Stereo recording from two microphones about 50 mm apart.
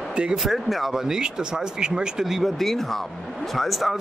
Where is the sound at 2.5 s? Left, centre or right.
Centre.